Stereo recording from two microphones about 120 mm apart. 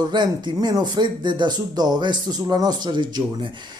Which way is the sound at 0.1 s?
35° right (ahead or behind).